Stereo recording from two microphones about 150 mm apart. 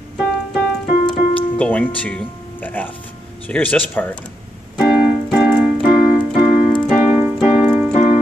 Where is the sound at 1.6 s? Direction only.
10° left (ahead or behind).